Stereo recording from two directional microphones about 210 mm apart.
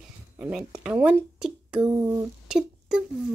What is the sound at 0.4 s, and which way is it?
Speech, 5° right (ahead or behind).